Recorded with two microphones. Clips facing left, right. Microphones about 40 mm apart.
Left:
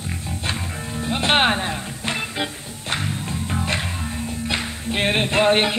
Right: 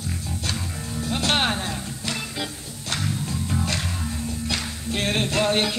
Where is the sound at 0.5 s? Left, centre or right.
Left.